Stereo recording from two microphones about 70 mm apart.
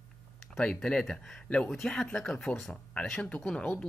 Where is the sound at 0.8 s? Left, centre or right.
Centre.